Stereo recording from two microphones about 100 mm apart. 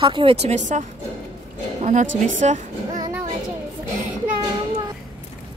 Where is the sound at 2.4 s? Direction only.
90° right.